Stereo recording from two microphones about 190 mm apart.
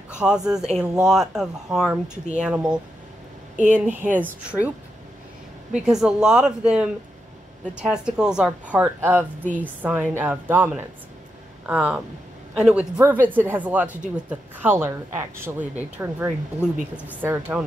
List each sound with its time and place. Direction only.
0.1 s a woman's voice: 5° right (ahead or behind)
5.7 s a woman's voice: 5° right (ahead or behind)